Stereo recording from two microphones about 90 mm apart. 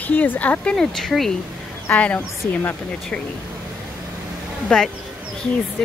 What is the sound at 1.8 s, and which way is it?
Speech, 15° left (ahead or behind).